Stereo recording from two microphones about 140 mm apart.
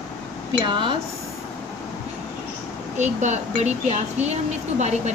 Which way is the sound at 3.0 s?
55° right (ahead or behind).